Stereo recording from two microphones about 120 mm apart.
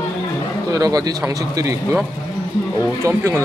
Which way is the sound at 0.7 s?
30° right (ahead or behind).